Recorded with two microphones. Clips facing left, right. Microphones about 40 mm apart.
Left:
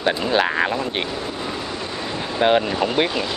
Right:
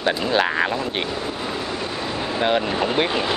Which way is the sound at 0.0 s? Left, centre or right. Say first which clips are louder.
Left 1 dB; centre.